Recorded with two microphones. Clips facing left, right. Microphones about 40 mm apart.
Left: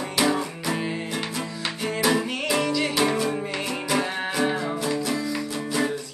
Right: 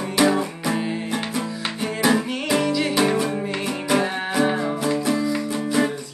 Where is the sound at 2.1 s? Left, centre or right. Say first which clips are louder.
Right 2 dB; centre.